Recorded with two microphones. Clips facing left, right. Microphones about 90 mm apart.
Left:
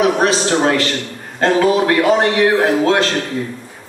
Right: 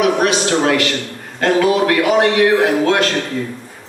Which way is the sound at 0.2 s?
25° left (ahead or behind).